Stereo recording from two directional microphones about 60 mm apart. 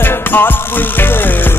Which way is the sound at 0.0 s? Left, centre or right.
Left.